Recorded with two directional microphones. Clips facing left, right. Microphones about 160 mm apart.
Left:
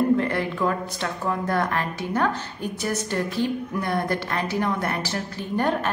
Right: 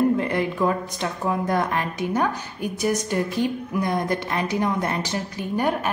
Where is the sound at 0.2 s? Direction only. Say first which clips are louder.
Right 1 dB; 15° right (ahead or behind).